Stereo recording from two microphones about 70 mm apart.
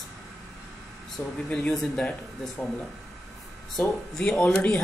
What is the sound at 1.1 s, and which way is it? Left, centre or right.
Speech, centre.